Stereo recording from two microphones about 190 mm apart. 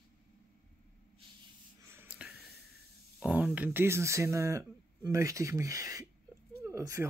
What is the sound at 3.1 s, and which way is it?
Speech, 5° right (ahead or behind).